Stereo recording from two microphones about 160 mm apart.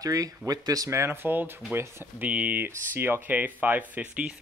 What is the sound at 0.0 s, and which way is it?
Speech, 20° right (ahead or behind).